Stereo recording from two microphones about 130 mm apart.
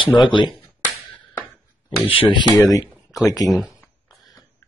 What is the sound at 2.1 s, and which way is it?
Speech, 45° left (ahead or behind).